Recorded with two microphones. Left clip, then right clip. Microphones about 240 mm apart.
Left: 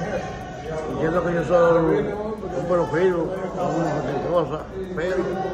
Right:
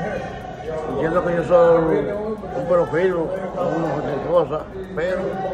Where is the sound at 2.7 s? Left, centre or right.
Centre.